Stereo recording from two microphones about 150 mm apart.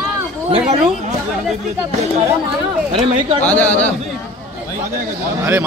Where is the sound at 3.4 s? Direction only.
10° left (ahead or behind).